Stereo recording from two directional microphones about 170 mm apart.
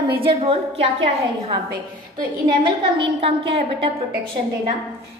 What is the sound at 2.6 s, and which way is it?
Speech, 30° right (ahead or behind).